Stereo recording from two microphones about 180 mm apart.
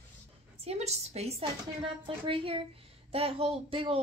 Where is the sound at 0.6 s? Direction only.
35° right (ahead or behind).